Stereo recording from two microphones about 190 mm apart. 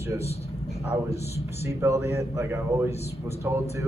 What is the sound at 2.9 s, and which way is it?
Speech, 35° left (ahead or behind).